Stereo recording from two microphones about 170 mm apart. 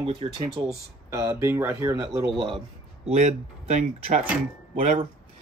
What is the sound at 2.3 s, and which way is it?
Speech, 30° right (ahead or behind).